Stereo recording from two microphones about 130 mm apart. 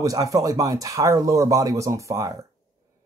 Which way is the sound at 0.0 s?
25° right (ahead or behind).